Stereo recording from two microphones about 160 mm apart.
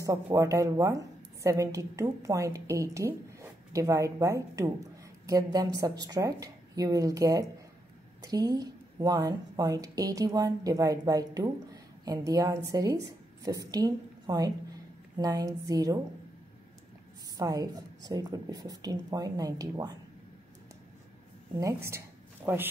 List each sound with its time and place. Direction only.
0.0 s a woman's voice: 20° right (ahead or behind)
17.4 s speech: 25° right (ahead or behind)
21.8 s a sound: 15° right (ahead or behind)